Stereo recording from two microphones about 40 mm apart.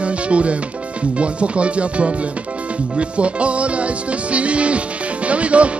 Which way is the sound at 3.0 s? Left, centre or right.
Right.